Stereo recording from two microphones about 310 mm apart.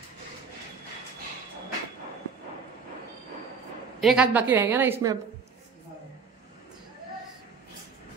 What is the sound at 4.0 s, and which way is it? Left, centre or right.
A woman's voice, centre.